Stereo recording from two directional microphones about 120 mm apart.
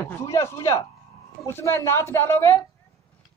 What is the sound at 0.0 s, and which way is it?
A man's voice, 20° left (ahead or behind).